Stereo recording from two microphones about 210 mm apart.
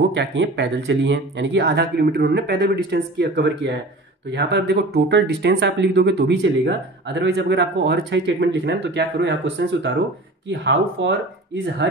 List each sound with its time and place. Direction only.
0.0 s speech: 55° right (ahead or behind)